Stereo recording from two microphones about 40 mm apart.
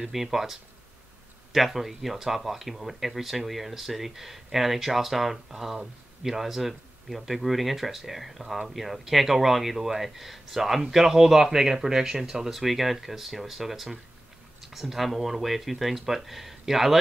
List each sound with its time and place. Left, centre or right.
0.0 s speech: centre